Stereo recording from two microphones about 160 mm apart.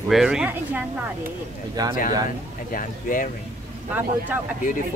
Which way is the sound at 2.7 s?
60° left (ahead or behind).